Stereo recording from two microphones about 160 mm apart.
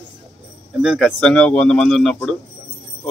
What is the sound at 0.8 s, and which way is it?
Speech, centre (ahead or behind).